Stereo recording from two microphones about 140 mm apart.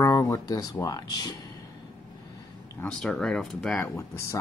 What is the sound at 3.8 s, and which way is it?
Speech, 20° left (ahead or behind).